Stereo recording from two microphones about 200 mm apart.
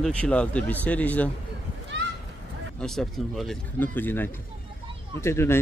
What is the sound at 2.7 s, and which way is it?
Speech, centre (ahead or behind).